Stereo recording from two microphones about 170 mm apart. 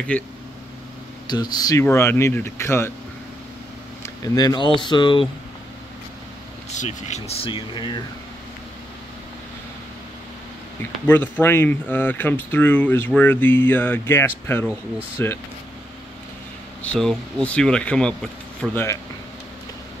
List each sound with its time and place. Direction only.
0.1 s speech: 10° left (ahead or behind)
1.2 s speech: 25° left (ahead or behind)
4.0 s speech: 25° left (ahead or behind)
6.7 s speech: 45° left (ahead or behind); by 8.0 s 30° left (ahead or behind)
10.8 s speech: 10° left (ahead or behind)
16.8 s speech: 5° left (ahead or behind)